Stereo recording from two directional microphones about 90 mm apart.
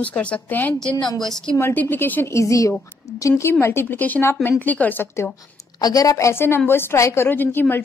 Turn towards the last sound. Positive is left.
turn(degrees=20)  # may be behind; listen again after turning